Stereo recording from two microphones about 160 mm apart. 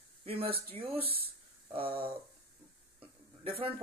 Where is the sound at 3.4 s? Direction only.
35° right (ahead or behind).